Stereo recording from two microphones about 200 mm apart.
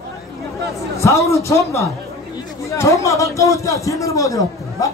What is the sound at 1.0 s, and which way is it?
A man's voice, 15° left (ahead or behind).